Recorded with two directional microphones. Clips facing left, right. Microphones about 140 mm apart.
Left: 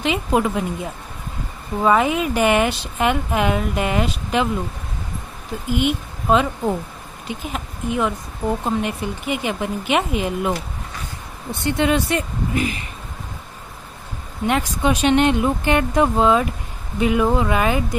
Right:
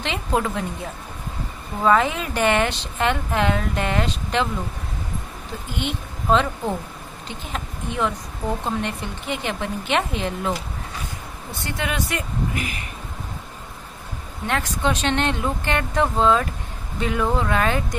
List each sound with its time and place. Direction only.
0.0 s speech: 10° left (ahead or behind)
1.8 s speech: 10° left (ahead or behind)
5.7 s speech: 10° left (ahead or behind)
11.6 s speech: 25° left (ahead or behind)
14.4 s speech: 15° left (ahead or behind)